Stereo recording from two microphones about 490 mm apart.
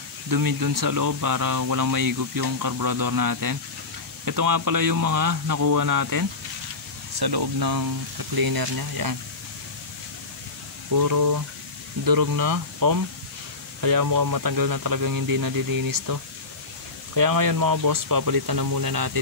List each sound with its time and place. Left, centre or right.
0.3 s speech: right
10.9 s speech: right